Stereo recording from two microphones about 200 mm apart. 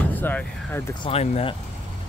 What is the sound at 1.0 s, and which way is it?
Speech, 30° left (ahead or behind).